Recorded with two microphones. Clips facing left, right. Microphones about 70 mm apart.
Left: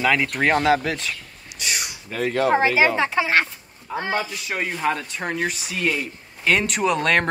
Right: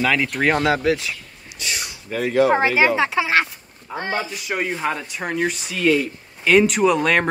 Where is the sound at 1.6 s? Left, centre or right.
Centre.